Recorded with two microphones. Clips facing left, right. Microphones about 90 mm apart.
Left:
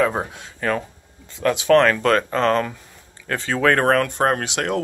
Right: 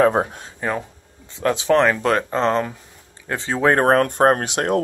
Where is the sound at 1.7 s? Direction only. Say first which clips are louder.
Left 2 dB; 20° right (ahead or behind).